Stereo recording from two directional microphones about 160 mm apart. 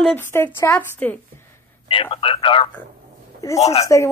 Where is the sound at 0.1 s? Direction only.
15° left (ahead or behind).